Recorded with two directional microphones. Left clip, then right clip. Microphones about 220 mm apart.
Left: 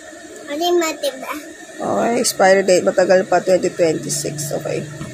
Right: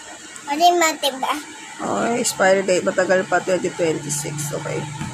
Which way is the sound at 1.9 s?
10° left (ahead or behind).